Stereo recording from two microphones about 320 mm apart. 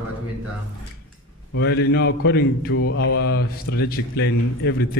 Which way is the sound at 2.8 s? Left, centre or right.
Left.